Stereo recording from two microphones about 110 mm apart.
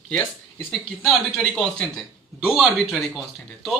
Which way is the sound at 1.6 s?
5° left (ahead or behind).